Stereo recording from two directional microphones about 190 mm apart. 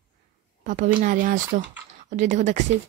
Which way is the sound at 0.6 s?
40° right (ahead or behind).